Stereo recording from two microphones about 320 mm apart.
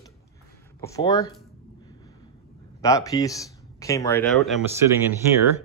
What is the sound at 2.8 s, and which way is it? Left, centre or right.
Speech, centre.